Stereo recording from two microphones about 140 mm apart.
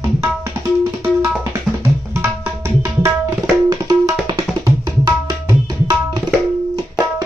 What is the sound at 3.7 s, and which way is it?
Tabla, 30° right (ahead or behind).